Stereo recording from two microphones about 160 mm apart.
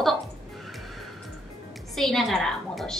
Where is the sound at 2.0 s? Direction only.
Centre (ahead or behind).